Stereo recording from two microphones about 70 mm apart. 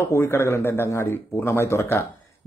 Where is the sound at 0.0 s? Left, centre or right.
Left.